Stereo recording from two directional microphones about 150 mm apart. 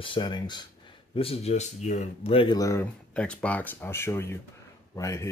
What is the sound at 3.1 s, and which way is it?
Speech, 5° left (ahead or behind).